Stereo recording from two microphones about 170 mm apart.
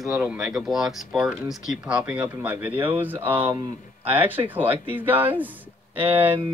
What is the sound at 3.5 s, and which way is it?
Speech, 20° right (ahead or behind).